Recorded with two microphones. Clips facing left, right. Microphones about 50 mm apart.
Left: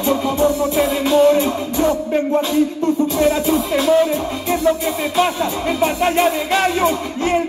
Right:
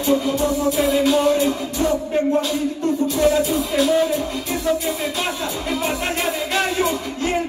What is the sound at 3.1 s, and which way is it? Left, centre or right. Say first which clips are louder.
Music: left 2 dB; left.